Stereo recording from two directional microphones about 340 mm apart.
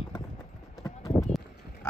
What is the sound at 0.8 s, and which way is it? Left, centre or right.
Clip-clop, centre.